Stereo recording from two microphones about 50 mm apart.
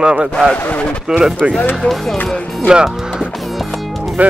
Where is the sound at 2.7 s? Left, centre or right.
Centre.